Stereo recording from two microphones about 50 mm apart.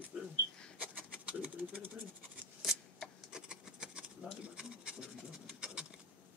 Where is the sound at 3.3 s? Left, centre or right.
Centre.